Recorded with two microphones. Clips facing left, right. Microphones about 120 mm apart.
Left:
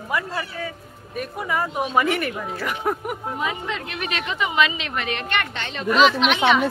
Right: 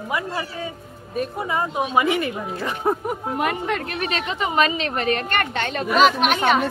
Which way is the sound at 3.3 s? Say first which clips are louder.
Right 6 dB; 60° right (ahead or behind).